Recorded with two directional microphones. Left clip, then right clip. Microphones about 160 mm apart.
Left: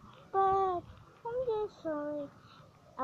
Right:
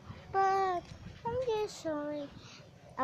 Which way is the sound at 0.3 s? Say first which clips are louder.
Left 1 dB; 10° right (ahead or behind).